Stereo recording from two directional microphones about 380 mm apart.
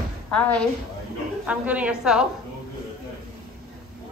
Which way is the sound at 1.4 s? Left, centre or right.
Centre.